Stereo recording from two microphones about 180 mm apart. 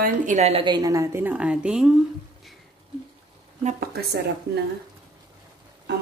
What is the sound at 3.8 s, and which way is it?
Speech, 60° right (ahead or behind).